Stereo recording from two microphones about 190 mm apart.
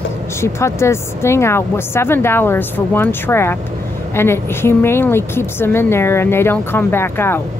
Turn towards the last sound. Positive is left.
turn(degrees=10)  # may be behind; listen again after turning